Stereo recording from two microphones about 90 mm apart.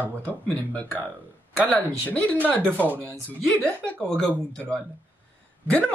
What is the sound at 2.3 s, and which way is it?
Speech, 20° right (ahead or behind).